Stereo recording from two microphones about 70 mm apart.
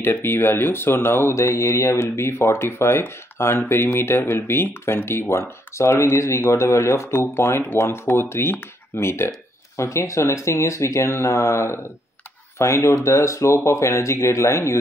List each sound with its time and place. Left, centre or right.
0.0 s speech: left